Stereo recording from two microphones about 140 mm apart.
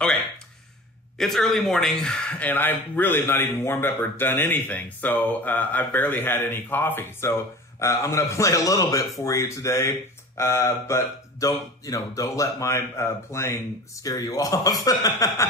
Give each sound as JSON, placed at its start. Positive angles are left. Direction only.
{"t": 1.1, "sound": "a man's voice", "side_deg": 0}